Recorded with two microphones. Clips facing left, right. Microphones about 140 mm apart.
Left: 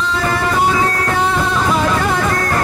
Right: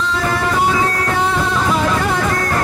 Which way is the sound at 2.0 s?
60° left (ahead or behind).